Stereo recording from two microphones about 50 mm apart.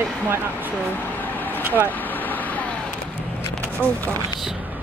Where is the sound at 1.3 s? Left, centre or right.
Left.